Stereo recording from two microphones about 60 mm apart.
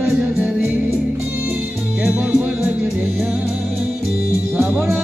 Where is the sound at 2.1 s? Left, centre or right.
Centre.